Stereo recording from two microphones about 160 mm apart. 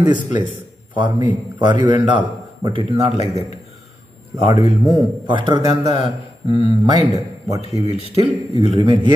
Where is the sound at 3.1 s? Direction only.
40° left (ahead or behind).